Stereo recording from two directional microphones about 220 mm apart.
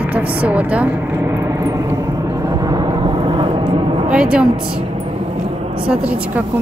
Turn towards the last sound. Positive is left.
turn(degrees=-5)  # may be behind; listen again after turning